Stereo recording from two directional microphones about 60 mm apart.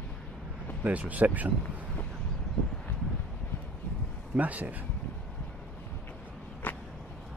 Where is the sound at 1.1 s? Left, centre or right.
Right.